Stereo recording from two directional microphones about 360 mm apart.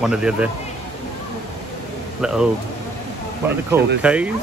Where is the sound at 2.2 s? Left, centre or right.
Centre.